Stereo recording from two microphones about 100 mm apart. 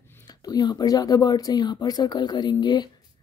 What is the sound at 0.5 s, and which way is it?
Speech, 45° left (ahead or behind).